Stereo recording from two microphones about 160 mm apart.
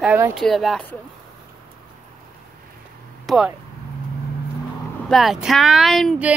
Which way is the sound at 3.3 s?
5° right (ahead or behind).